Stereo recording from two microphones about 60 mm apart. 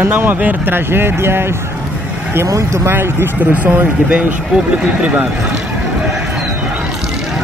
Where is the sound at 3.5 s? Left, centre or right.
Right.